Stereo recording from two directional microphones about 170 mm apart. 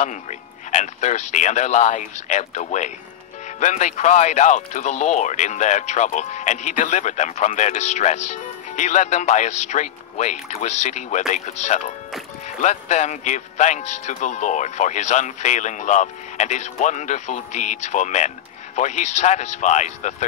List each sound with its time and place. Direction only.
0.0 s speech: 45° left (ahead or behind)